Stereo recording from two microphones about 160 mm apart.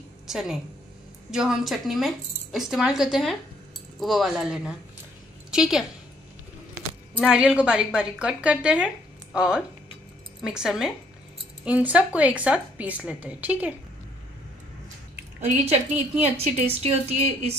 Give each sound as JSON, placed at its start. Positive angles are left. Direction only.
{"t": 0.3, "sound": "a woman's voice", "side_deg": 0}
{"t": 7.2, "sound": "a woman's voice", "side_deg": -5}
{"t": 15.4, "sound": "a woman's voice", "side_deg": -40}